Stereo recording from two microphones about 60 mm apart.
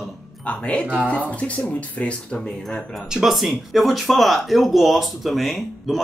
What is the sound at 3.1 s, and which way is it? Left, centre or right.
Speech, centre.